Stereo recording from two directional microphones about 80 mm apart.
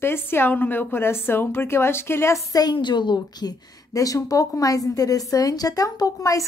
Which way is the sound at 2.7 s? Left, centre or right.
Left.